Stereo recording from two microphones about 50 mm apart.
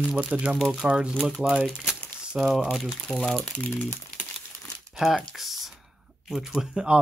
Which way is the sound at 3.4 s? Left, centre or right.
Left.